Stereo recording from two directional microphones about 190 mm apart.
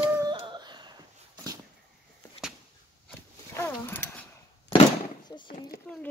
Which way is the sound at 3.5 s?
10° left (ahead or behind).